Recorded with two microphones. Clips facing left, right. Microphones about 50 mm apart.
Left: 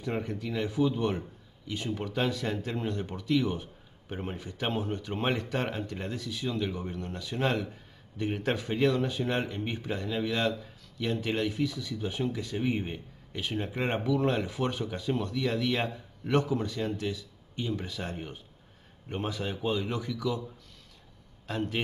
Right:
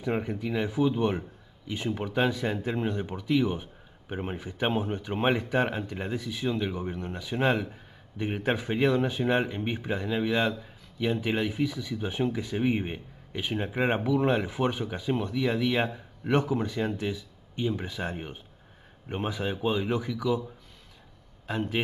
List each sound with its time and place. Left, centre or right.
0.0 s speech: centre
21.5 s a man's voice: centre